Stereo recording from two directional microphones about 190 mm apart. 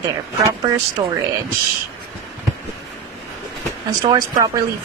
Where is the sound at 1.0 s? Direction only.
20° right (ahead or behind).